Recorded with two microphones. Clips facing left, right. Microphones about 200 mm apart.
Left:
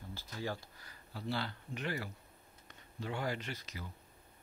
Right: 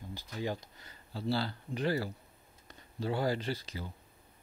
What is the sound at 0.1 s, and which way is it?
Speech, 15° right (ahead or behind).